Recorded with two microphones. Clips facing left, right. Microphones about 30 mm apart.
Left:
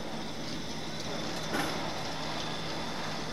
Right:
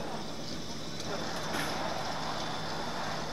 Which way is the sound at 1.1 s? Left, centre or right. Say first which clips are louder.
Even; centre.